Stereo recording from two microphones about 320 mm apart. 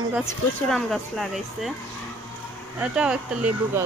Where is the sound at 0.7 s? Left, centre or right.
Centre.